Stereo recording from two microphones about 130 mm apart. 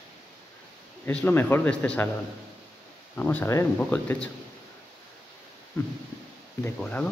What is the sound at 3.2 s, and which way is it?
Speech, 15° left (ahead or behind).